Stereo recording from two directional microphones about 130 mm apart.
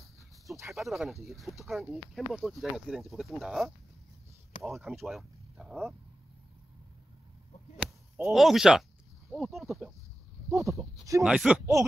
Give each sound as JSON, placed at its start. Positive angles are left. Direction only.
{"t": 0.7, "sound": "speech", "side_deg": 0}
{"t": 7.8, "sound": "speech", "side_deg": 0}
{"t": 10.5, "sound": "speech", "side_deg": -25}
{"t": 11.2, "sound": "speech", "side_deg": -5}